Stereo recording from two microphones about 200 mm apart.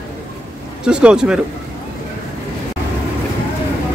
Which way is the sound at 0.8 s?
5° right (ahead or behind).